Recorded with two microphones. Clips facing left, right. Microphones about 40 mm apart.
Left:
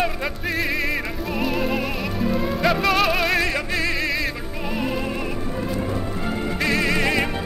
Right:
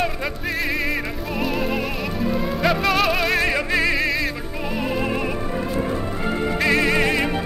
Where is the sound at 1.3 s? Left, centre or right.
Centre.